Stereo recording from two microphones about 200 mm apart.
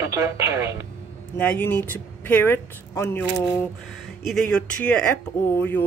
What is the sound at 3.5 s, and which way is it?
Speech, centre (ahead or behind).